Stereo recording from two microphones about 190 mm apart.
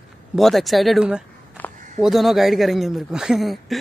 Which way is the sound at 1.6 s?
10° left (ahead or behind).